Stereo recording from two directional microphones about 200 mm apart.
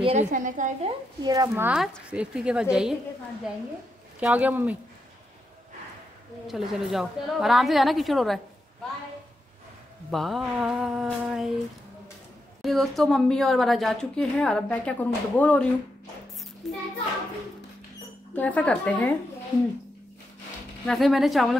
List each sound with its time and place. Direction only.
0.0 s a woman's voice: 35° right (ahead or behind)
1.2 s a woman's voice: 20° right (ahead or behind)
4.2 s speech: 5° right (ahead or behind)
6.4 s a woman's voice: centre (ahead or behind)
10.1 s a woman's voice: centre (ahead or behind)
12.6 s a woman's voice: centre (ahead or behind)
16.6 s child singing: centre (ahead or behind)
18.3 s a woman's voice: 5° left (ahead or behind)
20.8 s a woman's voice: centre (ahead or behind)